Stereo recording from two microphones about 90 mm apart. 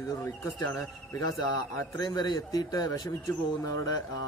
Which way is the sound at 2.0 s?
50° left (ahead or behind).